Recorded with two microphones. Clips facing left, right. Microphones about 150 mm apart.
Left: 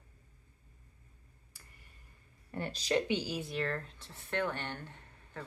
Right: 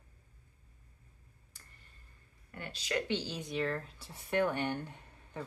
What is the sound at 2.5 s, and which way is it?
Speech, 35° left (ahead or behind).